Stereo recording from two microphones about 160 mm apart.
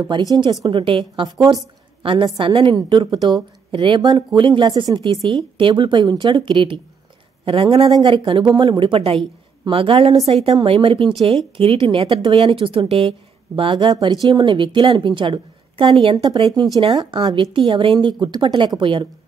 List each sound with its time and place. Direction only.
0.0 s a woman's voice: 25° right (ahead or behind)